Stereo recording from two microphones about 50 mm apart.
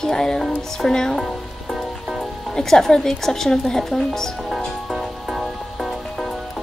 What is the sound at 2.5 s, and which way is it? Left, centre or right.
Child singing, centre.